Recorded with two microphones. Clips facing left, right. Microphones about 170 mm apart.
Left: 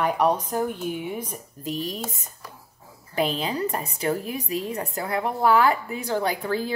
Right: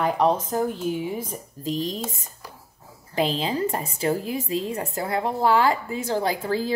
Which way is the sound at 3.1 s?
30° right (ahead or behind).